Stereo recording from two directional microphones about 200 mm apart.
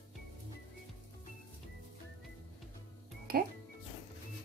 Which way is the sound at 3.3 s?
50° right (ahead or behind).